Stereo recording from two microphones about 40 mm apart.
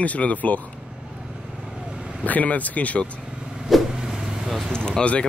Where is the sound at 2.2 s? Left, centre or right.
Left.